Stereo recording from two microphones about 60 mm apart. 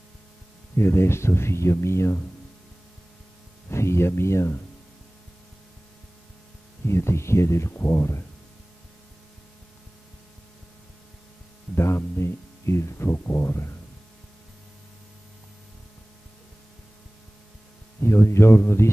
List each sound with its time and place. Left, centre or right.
0.7 s speech: left
3.7 s speech: left
6.9 s speech: left
11.7 s speech: left
18.0 s speech: left